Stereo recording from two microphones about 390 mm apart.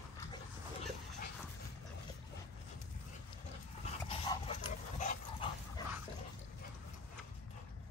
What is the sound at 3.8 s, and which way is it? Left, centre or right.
Dog, centre.